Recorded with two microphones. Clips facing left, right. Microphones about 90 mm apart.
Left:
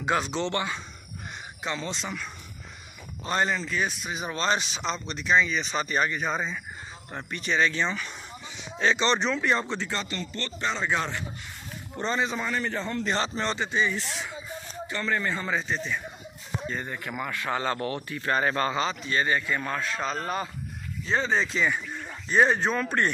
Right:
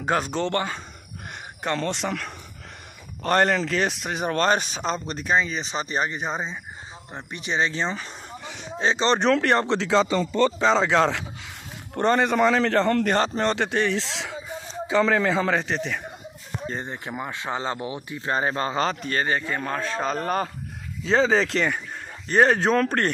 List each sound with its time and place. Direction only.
0.0 s speech: 45° right (ahead or behind)
1.6 s a man's voice: 60° right (ahead or behind); by 9.2 s 35° right (ahead or behind)
9.2 s a man's voice: 65° right (ahead or behind); by 11.2 s 90° right
11.9 s a man's voice: 60° right (ahead or behind)
13.6 s a man's voice: 70° right (ahead or behind)
16.6 s speech: 30° right (ahead or behind)
18.8 s speech: 50° right (ahead or behind)
19.2 s speech: 35° right (ahead or behind)
21.0 s a man's voice: 90° right; by 23.1 s 55° right (ahead or behind)